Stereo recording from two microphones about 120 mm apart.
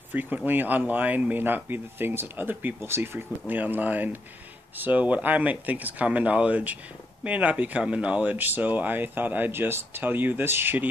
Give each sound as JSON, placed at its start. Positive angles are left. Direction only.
{"t": 0.1, "sound": "speech", "side_deg": -15}